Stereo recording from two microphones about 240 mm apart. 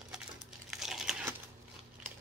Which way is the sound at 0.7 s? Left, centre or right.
Centre.